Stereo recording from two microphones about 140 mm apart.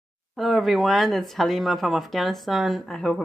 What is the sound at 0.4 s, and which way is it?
A woman's voice, centre (ahead or behind).